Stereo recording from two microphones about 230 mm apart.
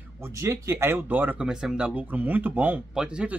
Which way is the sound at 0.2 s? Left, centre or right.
Centre.